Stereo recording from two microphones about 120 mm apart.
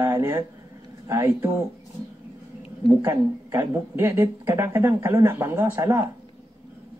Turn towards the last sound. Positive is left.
turn(degrees=-20)  # may be behind; listen again after turning